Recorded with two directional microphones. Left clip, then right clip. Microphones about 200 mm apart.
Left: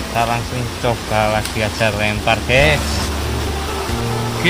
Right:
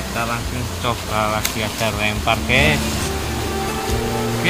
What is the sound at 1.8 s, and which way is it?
Speech, 15° left (ahead or behind).